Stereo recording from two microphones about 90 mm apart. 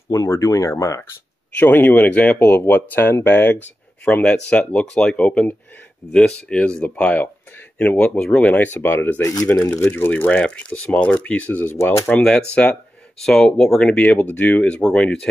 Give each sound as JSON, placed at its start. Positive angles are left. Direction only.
{"t": 0.1, "sound": "speech", "side_deg": 30}
{"t": 1.6, "sound": "speech", "side_deg": 20}
{"t": 12.1, "sound": "speech", "side_deg": 10}